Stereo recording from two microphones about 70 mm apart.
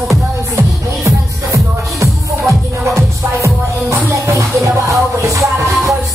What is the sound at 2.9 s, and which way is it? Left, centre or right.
Music, right.